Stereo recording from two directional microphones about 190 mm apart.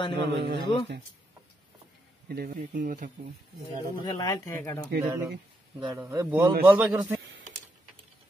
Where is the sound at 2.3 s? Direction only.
50° right (ahead or behind).